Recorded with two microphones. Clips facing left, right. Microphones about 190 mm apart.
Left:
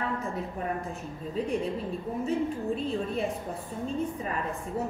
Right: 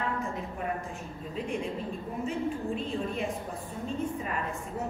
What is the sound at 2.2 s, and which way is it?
A woman's voice, 35° left (ahead or behind).